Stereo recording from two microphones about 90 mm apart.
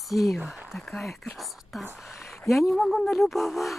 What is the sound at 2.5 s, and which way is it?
Speech, centre (ahead or behind).